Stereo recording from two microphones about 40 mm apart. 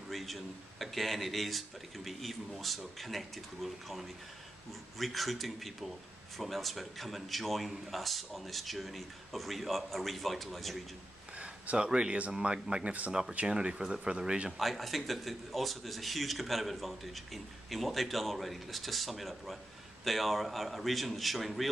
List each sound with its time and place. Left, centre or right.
0.1 s speech: centre
11.3 s a sound: right
12.3 s speech: centre
14.6 s speech: centre